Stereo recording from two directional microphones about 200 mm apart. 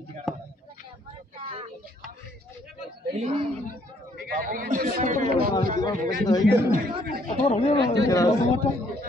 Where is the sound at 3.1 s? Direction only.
35° right (ahead or behind).